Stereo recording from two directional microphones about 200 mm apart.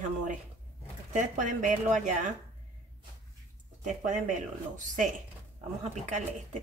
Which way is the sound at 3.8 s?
40° right (ahead or behind).